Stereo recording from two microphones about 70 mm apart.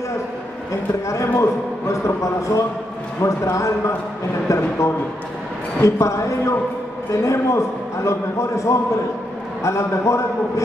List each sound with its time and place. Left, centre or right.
1.0 s a man's voice: left